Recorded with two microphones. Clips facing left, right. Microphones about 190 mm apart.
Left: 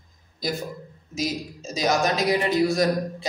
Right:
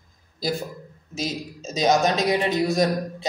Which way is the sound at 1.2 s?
20° right (ahead or behind).